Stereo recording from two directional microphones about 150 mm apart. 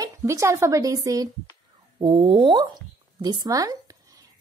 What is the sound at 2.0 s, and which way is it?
Speech, 35° right (ahead or behind).